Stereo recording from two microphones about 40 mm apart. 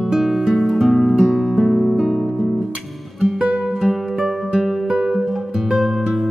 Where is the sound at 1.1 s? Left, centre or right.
Centre.